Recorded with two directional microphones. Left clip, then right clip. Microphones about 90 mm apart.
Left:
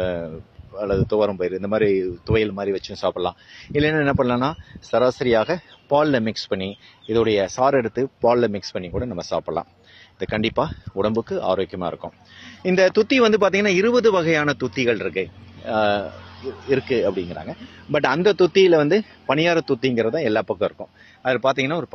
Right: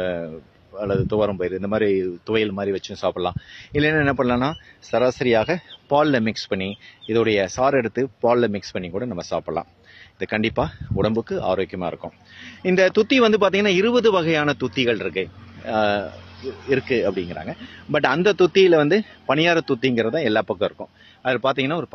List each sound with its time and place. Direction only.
0.7 s a man's voice: 15° right (ahead or behind); by 20.8 s 45° right (ahead or behind)
21.2 s speech: 15° right (ahead or behind)